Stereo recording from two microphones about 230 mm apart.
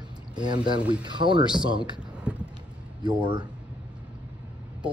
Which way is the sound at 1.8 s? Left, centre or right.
Centre.